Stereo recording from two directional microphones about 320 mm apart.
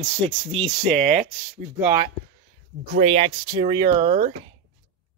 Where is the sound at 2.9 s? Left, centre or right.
Centre.